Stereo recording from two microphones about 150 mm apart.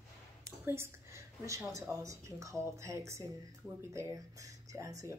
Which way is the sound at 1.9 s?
20° right (ahead or behind).